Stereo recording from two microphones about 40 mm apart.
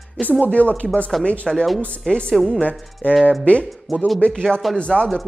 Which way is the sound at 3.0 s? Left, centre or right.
Left.